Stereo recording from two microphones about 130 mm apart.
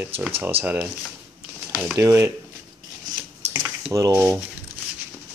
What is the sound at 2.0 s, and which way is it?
Speech, 25° right (ahead or behind).